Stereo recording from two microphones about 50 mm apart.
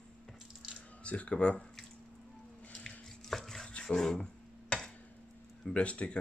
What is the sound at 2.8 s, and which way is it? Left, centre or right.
Chopping, centre.